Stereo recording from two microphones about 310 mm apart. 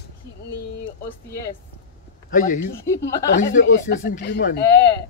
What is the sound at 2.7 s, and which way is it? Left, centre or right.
Speech, centre.